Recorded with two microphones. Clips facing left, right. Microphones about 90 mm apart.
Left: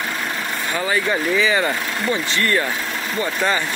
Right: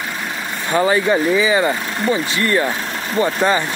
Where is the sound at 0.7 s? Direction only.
30° right (ahead or behind).